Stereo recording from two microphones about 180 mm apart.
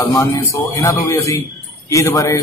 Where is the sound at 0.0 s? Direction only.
20° left (ahead or behind).